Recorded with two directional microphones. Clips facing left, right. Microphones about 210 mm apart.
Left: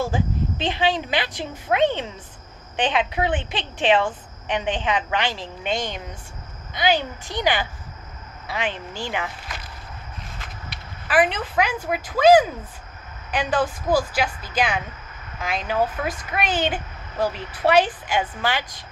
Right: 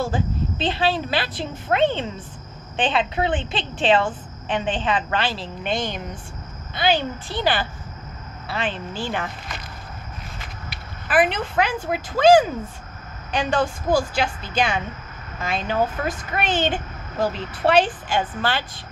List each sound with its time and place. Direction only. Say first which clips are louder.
0.0 s a woman's voice: even; 15° left (ahead or behind)
6.7 s a woman's voice: even; 15° left (ahead or behind)
11.3 s a woman's voice: right 1 dB; 10° left (ahead or behind)